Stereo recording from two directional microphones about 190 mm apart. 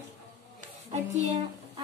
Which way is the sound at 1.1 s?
40° right (ahead or behind).